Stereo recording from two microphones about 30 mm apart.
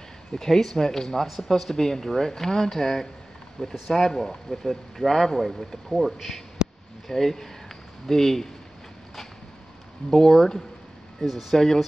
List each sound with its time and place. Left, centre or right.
0.3 s speech: centre
1.2 s speech: centre
5.9 s speech: centre
7.1 s speech: centre
10.1 s speech: centre
11.1 s speech: centre
11.5 s speech: centre